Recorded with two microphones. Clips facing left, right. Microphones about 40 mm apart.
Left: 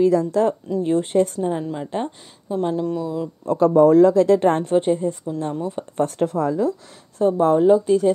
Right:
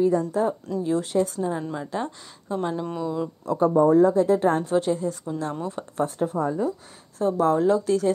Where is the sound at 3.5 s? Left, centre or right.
Left.